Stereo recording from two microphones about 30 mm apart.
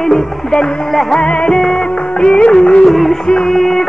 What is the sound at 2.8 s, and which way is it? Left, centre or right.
Music, centre.